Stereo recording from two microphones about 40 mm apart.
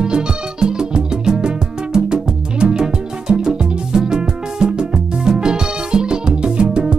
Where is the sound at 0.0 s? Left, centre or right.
Right.